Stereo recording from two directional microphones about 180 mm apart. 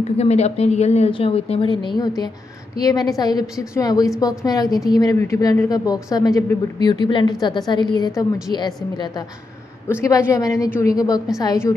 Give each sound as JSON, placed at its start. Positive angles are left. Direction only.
{"t": 0.2, "sound": "a woman's voice", "side_deg": 35}